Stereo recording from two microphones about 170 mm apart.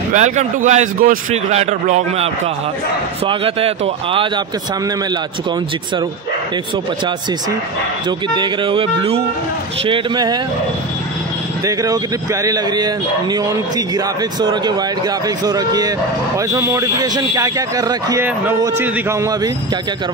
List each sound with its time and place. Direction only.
0.1 s a man's voice: 45° right (ahead or behind)
8.4 s speech: 30° right (ahead or behind)
11.6 s speech: 20° right (ahead or behind)